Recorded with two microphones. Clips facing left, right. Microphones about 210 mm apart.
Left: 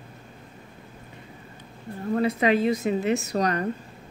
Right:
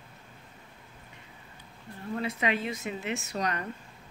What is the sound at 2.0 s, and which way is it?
A woman's voice, 45° left (ahead or behind).